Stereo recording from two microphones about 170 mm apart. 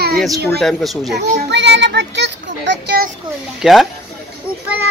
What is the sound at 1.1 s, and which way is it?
A child's voice, 80° right.